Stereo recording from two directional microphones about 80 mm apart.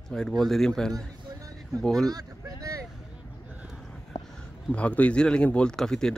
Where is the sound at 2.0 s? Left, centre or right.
Right.